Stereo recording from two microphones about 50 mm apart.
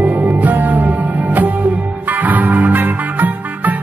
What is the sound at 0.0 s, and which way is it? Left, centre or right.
Music, right.